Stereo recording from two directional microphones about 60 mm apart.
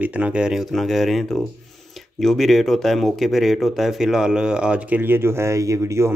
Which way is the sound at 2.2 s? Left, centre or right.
Centre.